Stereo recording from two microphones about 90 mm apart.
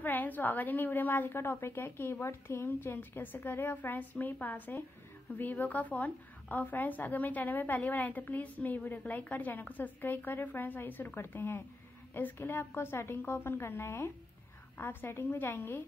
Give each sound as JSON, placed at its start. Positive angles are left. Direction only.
{"t": 0.0, "sound": "a woman's voice", "side_deg": 20}